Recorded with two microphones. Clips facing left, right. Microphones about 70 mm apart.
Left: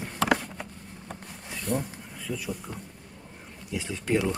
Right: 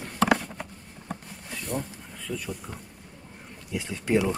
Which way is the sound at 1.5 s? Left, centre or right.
Centre.